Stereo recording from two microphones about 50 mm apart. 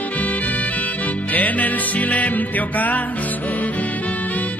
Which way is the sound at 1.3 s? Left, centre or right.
Left.